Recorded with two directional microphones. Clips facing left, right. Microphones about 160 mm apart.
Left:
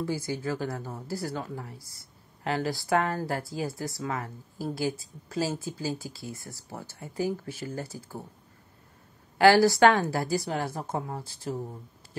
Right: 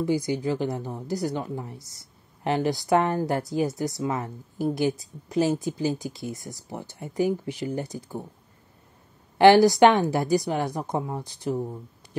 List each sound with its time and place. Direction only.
0.0 s a woman's voice: 15° right (ahead or behind)
9.4 s a woman's voice: 20° right (ahead or behind)